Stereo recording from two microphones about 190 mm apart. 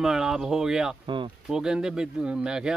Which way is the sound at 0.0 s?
5° right (ahead or behind).